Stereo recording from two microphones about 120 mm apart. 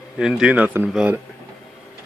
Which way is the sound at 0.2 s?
5° right (ahead or behind).